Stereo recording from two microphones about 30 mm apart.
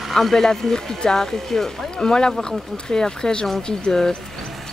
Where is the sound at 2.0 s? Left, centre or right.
Left.